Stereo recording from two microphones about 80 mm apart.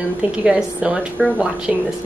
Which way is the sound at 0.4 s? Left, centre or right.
Centre.